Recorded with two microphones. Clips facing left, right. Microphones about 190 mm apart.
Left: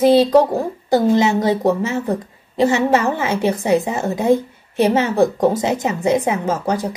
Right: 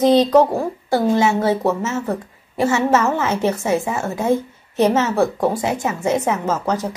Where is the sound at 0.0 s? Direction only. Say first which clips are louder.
Left 1 dB; 10° left (ahead or behind).